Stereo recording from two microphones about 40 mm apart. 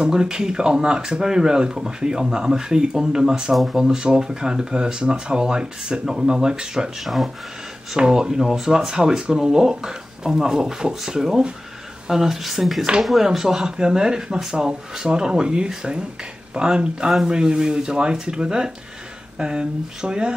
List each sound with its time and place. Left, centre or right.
0.0 s speech: centre